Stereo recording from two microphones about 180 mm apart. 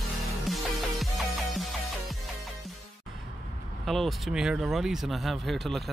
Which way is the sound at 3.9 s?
Centre (ahead or behind).